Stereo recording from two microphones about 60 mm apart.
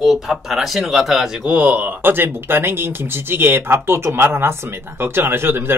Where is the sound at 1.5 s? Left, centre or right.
Right.